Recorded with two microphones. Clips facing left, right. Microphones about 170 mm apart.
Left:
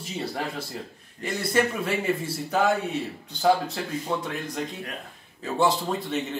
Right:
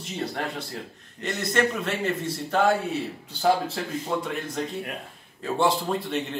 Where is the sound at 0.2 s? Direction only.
Centre (ahead or behind).